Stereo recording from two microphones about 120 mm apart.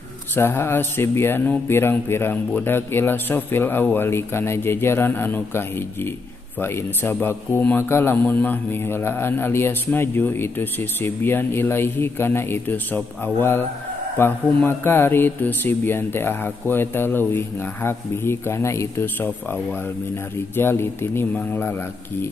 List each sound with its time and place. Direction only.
0.4 s speech: 20° left (ahead or behind)